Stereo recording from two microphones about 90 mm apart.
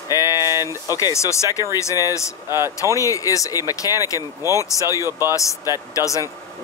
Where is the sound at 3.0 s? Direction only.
35° left (ahead or behind).